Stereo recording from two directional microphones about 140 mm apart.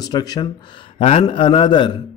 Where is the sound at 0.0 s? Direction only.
25° left (ahead or behind).